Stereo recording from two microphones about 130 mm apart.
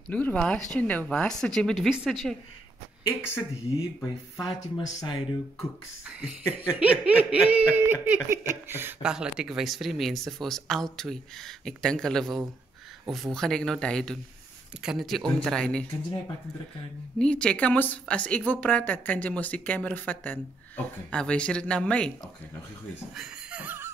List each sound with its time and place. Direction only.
0.1 s speech: 10° left (ahead or behind)
3.2 s speech: 20° left (ahead or behind)
4.4 s speech: 35° left (ahead or behind)
5.6 s snicker: 5° right (ahead or behind)
9.0 s speech: 5° right (ahead or behind)
17.2 s speech: 5° left (ahead or behind)
23.1 s chuckle: 5° right (ahead or behind)